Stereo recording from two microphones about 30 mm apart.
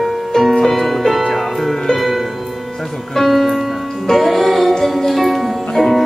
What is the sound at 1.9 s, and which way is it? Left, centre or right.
Music, centre.